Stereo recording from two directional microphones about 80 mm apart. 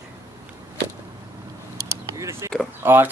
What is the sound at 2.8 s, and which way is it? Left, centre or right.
Speech, right.